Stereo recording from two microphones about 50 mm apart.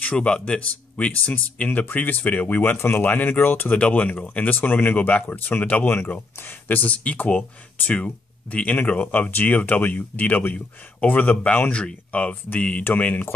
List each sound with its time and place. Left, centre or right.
0.0 s speech: left
3.7 s speech: left
5.9 s speech: left